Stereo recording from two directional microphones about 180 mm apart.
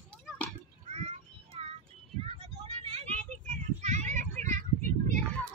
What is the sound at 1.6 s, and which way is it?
Child singing, 35° right (ahead or behind).